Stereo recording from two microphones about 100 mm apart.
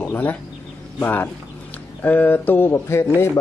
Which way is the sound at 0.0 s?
15° left (ahead or behind).